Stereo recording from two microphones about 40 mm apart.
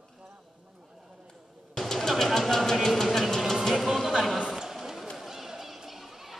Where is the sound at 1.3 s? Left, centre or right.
Centre.